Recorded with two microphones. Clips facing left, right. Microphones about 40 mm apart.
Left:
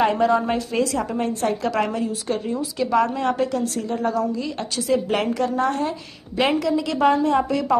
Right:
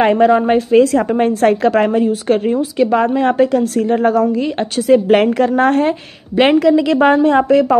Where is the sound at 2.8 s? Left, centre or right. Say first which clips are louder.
Right 6 dB; right.